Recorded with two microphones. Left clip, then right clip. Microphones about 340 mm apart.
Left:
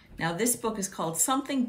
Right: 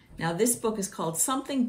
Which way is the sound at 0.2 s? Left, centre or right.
Centre.